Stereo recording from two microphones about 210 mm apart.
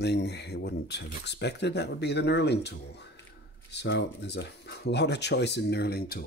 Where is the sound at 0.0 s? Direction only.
50° left (ahead or behind).